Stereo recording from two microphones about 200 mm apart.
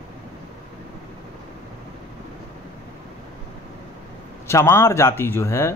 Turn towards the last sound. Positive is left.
turn(degrees=15)  # may be behind; listen again after turning